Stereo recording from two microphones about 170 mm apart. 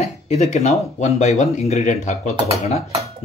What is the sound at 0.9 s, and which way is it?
Speech, 40° left (ahead or behind).